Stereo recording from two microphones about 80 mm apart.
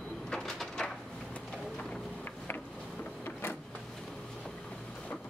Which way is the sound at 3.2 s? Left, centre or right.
Left.